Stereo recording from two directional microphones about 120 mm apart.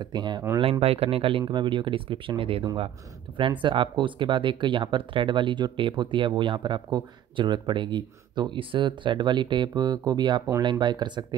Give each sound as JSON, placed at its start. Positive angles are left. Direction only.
{"t": 0.0, "sound": "speech", "side_deg": -40}
{"t": 0.6, "sound": "speech", "side_deg": -55}
{"t": 1.4, "sound": "speech", "side_deg": -40}